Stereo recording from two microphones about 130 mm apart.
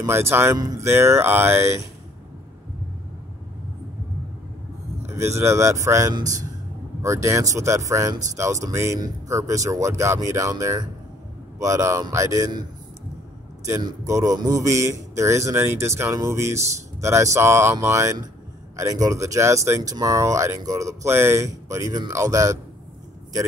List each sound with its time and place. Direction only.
0.0 s speech: 20° right (ahead or behind)
5.0 s speech: 20° right (ahead or behind)
13.7 s speech: 25° right (ahead or behind)